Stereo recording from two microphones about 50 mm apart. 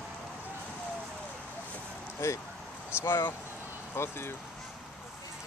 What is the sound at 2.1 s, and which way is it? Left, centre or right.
Speech, left.